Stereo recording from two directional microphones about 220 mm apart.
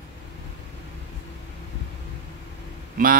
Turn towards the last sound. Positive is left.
turn(degrees=-40)  # may be behind; listen again after turning